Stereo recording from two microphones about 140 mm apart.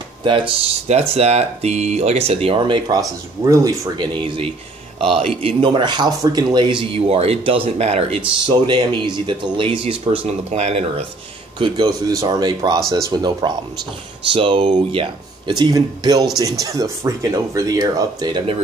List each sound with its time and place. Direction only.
0.8 s speech: 50° right (ahead or behind)
3.4 s speech: 25° right (ahead or behind)
3.9 s speech: 35° right (ahead or behind)
8.5 s speech: 35° right (ahead or behind)
11.5 s speech: 35° right (ahead or behind)